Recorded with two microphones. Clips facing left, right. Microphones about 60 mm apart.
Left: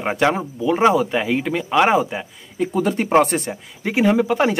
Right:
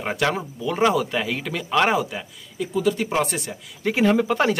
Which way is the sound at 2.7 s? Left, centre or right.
Left.